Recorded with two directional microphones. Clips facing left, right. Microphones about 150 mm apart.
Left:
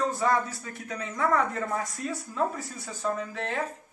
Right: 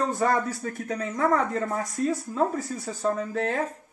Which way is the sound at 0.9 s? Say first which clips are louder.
Right 2 dB; 40° right (ahead or behind).